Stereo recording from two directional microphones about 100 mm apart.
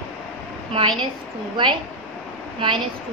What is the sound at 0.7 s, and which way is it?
Speech, 55° right (ahead or behind).